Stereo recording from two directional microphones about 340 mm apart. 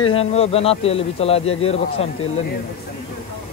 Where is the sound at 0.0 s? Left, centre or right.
Centre.